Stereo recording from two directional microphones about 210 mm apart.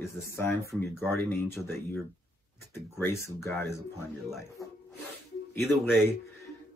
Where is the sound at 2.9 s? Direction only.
10° left (ahead or behind).